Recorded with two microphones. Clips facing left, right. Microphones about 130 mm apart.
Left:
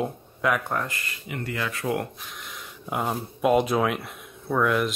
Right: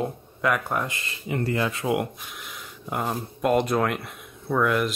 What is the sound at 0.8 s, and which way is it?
Speech, 20° right (ahead or behind).